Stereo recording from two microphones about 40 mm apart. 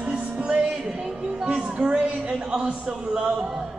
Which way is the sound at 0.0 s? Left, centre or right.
Right.